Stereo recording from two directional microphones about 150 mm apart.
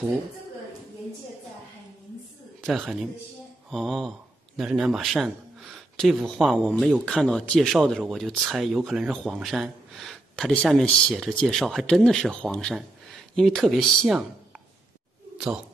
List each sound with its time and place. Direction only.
2.6 s speech: centre (ahead or behind)